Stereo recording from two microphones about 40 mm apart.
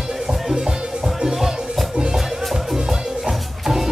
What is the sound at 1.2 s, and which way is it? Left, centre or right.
Music, centre.